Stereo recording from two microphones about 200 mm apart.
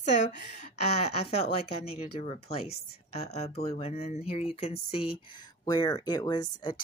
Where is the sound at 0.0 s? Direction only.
35° left (ahead or behind).